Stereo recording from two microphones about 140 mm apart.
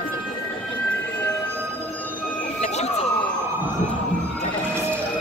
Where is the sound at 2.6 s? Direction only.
50° left (ahead or behind).